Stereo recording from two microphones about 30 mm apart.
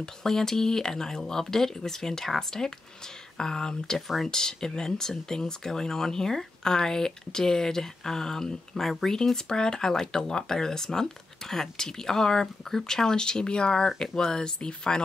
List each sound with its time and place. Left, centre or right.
0.0 s speech: centre